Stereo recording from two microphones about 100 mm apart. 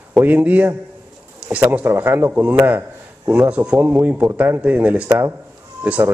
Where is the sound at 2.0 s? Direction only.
20° right (ahead or behind).